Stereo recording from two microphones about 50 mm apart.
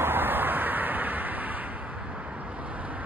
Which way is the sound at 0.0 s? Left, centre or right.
Right.